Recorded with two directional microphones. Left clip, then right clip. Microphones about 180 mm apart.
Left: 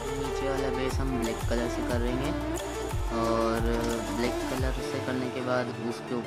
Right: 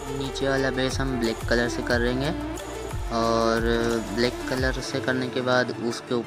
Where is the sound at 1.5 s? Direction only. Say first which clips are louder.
Right 6 dB; 25° right (ahead or behind).